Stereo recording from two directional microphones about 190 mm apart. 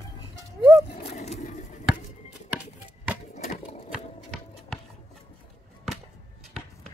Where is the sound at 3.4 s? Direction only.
35° left (ahead or behind).